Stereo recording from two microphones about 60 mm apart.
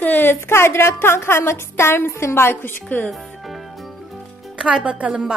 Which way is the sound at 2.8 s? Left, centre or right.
Left.